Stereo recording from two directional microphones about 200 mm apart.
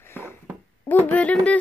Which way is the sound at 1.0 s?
5° left (ahead or behind).